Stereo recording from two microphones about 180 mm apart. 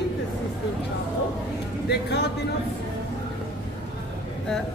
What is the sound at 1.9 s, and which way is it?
Speech, 70° left (ahead or behind).